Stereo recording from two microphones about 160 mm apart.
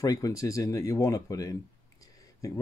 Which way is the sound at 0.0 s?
20° left (ahead or behind).